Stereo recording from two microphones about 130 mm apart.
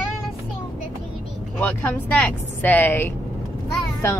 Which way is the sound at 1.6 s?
10° left (ahead or behind).